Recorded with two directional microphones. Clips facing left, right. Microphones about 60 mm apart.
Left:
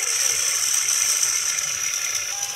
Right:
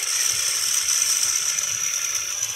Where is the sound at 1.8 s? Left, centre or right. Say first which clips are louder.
Left 2 dB; centre.